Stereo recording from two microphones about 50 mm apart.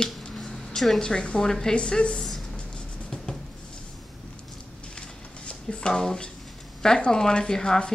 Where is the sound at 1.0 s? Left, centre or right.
Centre.